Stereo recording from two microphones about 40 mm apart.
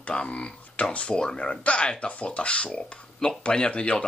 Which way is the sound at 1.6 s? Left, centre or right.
Left.